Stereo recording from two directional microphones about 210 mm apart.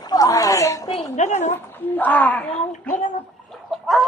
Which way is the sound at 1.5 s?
10° left (ahead or behind).